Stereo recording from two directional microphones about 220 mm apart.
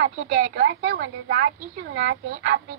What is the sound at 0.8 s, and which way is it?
Speech, 60° right (ahead or behind).